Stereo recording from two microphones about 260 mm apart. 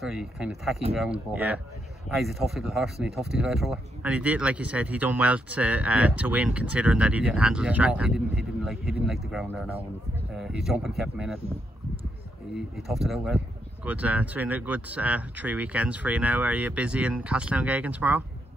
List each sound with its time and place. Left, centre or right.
0.0 s speech: centre
12.5 s speech: centre